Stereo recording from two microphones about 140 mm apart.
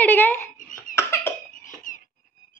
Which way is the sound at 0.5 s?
70° left (ahead or behind).